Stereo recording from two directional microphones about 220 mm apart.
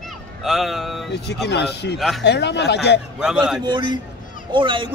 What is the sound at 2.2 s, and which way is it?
Speech, 50° left (ahead or behind).